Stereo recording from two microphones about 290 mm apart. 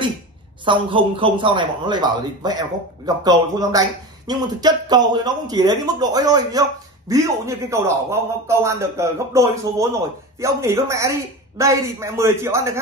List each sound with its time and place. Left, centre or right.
0.7 s a man's voice: centre